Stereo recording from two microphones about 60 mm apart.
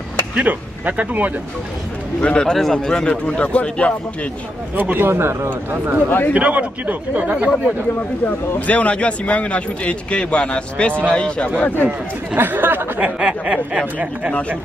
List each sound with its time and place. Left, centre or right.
0.4 s speech: right
2.2 s a man's voice: centre
4.7 s speech: right
6.0 s speech: left
6.3 s speech: right
8.5 s a man's voice: left
11.6 s speech: left
12.4 s speech: right
13.0 s speech: centre